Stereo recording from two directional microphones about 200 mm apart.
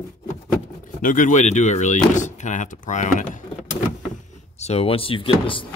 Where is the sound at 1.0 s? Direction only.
40° left (ahead or behind).